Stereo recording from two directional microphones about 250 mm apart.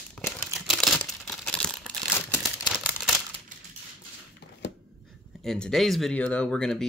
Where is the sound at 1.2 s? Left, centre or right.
Centre.